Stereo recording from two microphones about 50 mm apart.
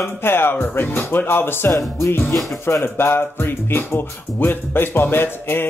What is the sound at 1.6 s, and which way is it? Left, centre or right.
Speech, left.